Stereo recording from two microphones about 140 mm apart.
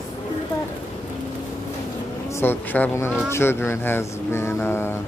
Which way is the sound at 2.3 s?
15° left (ahead or behind).